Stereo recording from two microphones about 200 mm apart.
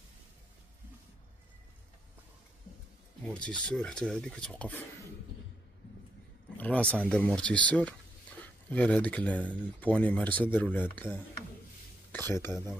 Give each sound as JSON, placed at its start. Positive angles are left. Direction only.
{"t": 3.2, "sound": "speech", "side_deg": 5}
{"t": 6.6, "sound": "speech", "side_deg": 5}